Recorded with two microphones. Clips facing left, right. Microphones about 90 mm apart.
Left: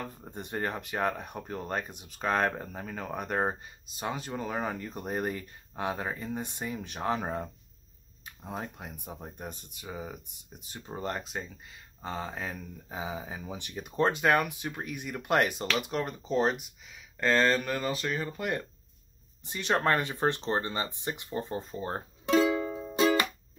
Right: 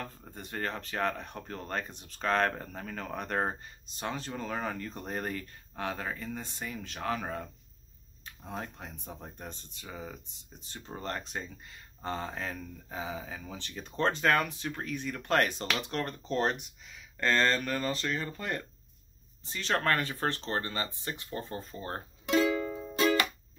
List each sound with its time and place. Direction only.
0.0 s speech: 20° left (ahead or behind)
8.3 s speech: 10° left (ahead or behind)
22.5 s music: 15° left (ahead or behind)